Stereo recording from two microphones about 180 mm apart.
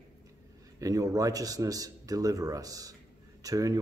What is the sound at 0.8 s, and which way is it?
A man's voice, 20° right (ahead or behind).